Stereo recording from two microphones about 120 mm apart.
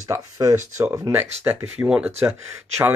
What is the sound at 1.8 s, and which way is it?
Speech, 10° right (ahead or behind).